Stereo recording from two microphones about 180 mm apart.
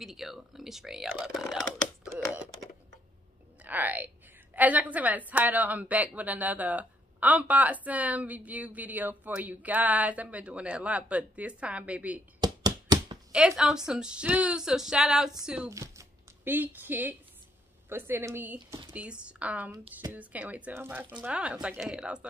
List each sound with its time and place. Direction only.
0.0 s speech: centre (ahead or behind)
3.6 s a woman's voice: 10° right (ahead or behind)
12.4 s a sound: 20° right (ahead or behind)
13.6 s speech: 5° right (ahead or behind)
15.7 s a sound: 15° right (ahead or behind)
17.8 s a woman's voice: 10° right (ahead or behind)